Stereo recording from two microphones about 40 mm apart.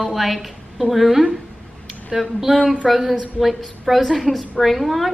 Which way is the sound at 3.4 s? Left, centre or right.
Centre.